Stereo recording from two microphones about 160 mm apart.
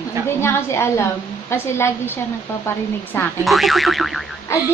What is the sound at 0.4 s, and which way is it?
A woman's voice, 15° left (ahead or behind).